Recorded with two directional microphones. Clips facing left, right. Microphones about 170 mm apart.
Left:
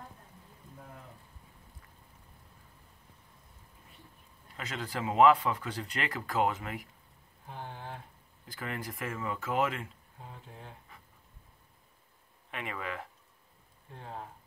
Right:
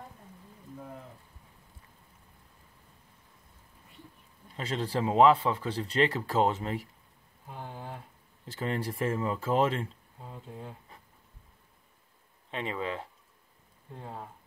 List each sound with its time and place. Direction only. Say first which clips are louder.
4.6 s speech: right 6 dB; 30° right (ahead or behind)
8.5 s speech: right 6 dB; 30° right (ahead or behind)
12.4 s speech: right 5 dB; 25° right (ahead or behind)